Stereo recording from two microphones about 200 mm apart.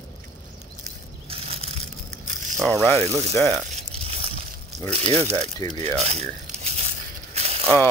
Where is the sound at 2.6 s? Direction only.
Centre (ahead or behind).